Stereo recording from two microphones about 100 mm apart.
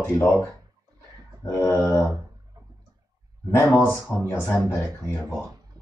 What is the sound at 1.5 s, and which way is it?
Speech, 20° left (ahead or behind).